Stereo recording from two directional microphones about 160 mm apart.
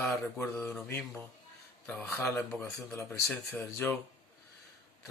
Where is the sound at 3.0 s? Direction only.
5° left (ahead or behind).